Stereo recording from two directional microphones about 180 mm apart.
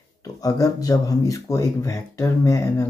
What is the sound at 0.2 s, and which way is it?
Speech, 20° left (ahead or behind).